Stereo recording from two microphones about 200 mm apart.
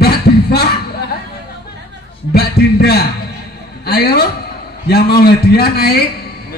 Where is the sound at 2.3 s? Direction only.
50° left (ahead or behind).